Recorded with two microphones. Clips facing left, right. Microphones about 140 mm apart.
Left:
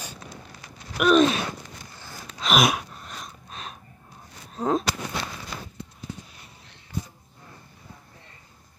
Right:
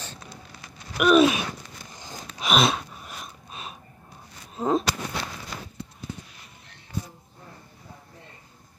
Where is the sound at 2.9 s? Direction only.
5° right (ahead or behind).